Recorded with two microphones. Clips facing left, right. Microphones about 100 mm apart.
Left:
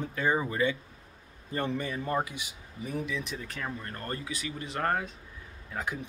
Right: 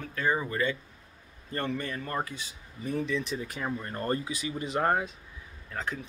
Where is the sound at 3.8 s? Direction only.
25° right (ahead or behind).